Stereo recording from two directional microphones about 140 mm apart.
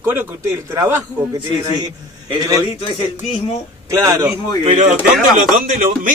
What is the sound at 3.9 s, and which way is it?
Speech, 20° right (ahead or behind).